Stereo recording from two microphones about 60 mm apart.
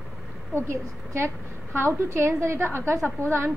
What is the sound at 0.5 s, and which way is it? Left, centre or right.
A woman's voice, right.